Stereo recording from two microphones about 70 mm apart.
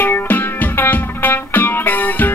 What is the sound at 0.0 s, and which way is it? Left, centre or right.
Music, left.